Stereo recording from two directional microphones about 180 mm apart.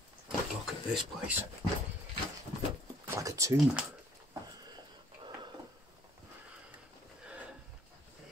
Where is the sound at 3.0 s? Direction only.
15° right (ahead or behind).